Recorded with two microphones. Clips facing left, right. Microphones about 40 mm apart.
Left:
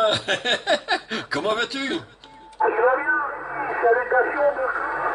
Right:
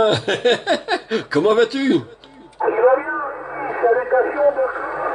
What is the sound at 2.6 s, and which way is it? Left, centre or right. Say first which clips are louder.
Radio: right 4 dB; centre.